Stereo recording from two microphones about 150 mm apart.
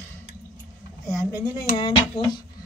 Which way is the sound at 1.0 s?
25° left (ahead or behind).